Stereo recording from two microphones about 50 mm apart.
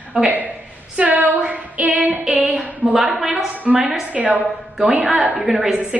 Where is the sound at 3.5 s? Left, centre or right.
Right.